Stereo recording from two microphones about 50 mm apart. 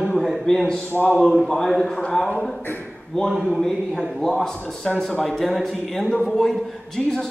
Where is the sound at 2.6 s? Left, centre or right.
Left.